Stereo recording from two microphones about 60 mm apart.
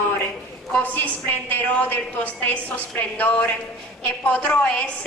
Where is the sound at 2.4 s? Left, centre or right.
Left.